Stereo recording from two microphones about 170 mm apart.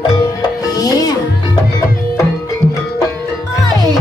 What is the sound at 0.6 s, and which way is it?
Music, 20° left (ahead or behind).